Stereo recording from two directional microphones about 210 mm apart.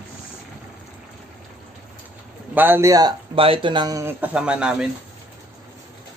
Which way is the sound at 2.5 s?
10° right (ahead or behind).